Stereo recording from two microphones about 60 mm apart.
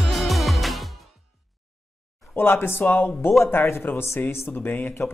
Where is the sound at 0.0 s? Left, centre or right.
Centre.